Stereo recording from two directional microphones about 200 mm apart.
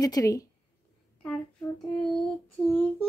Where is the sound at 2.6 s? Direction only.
20° left (ahead or behind).